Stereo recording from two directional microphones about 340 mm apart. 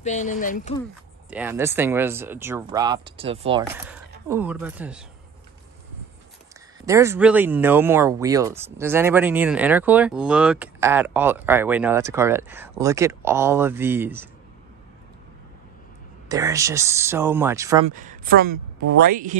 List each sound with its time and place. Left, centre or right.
0.0 s speech: left
1.3 s speech: centre
4.3 s speech: centre
6.9 s speech: centre
16.3 s speech: centre
17.8 s speech: right